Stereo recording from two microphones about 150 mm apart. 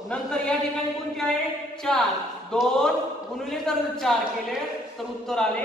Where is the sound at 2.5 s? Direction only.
5° left (ahead or behind).